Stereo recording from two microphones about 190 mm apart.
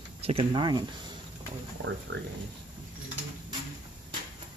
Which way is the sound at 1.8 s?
80° right.